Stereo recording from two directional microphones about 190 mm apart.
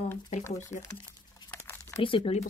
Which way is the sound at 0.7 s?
20° left (ahead or behind).